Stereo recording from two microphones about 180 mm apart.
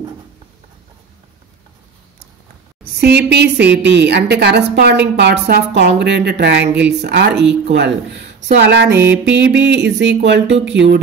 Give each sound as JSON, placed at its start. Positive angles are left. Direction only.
{"t": 2.8, "sound": "a woman's voice", "side_deg": -65}
{"t": 9.1, "sound": "a woman's voice", "side_deg": -85}